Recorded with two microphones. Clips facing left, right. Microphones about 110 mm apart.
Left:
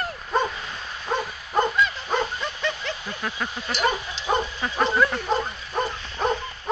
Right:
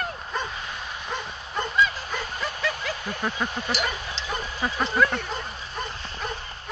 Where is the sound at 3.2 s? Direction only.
15° right (ahead or behind).